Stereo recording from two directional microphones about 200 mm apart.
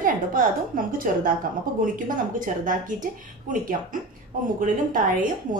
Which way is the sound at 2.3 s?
40° right (ahead or behind).